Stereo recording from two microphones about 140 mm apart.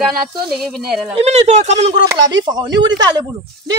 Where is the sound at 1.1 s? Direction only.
50° right (ahead or behind).